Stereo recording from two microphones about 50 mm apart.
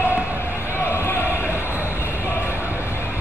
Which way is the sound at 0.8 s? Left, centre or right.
Left.